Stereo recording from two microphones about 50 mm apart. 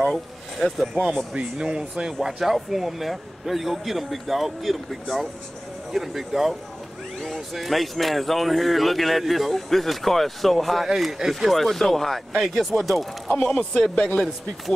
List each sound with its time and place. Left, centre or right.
0.6 s speech: centre
1.3 s speech: centre
2.2 s speech: centre
11.5 s speech: centre
13.4 s speech: centre